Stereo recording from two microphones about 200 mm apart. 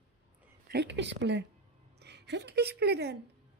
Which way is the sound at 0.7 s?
60° right (ahead or behind).